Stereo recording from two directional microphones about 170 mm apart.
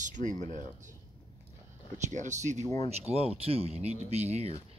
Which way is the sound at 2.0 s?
45° right (ahead or behind).